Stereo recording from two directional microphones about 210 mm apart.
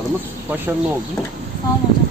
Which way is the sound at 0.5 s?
10° right (ahead or behind).